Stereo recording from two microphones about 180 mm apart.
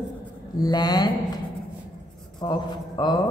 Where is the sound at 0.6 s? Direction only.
20° left (ahead or behind).